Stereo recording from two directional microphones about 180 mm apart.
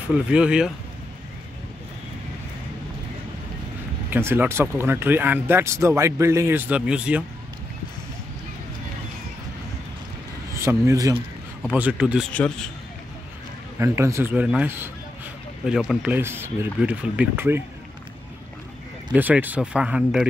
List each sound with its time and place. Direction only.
0.1 s speech: 5° right (ahead or behind)
4.1 s speech: 10° right (ahead or behind)
10.6 s speech: 15° right (ahead or behind)
11.6 s speech: 5° right (ahead or behind)
12.3 s a man's voice: 5° left (ahead or behind)
13.7 s speech: 15° right (ahead or behind)
19.1 s speech: 10° right (ahead or behind)